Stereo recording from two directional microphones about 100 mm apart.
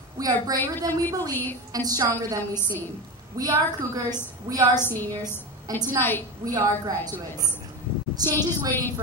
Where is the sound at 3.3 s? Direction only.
35° right (ahead or behind).